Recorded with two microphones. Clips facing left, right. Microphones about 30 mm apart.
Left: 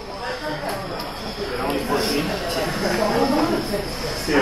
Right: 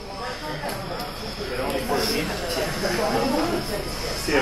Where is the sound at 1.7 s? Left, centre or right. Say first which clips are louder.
Left 2 dB; centre.